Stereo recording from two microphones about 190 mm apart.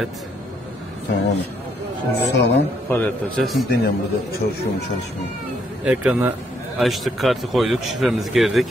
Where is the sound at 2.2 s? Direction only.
65° left (ahead or behind).